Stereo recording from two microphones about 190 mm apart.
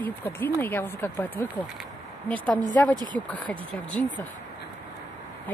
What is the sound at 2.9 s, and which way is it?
Speech, 25° right (ahead or behind).